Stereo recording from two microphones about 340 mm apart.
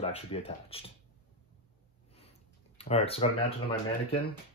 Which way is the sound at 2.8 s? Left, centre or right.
Centre.